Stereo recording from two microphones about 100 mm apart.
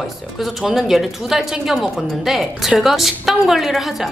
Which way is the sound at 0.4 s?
Centre (ahead or behind).